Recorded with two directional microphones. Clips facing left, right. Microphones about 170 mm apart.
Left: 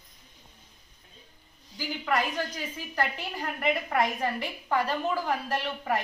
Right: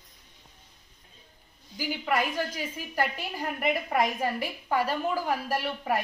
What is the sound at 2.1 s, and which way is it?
A woman's voice, 10° right (ahead or behind).